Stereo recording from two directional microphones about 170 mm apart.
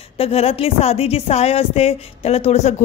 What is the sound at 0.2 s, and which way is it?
A woman's voice, 35° left (ahead or behind).